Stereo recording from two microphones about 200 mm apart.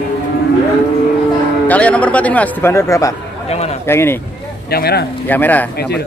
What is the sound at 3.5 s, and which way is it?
Speech, 30° left (ahead or behind).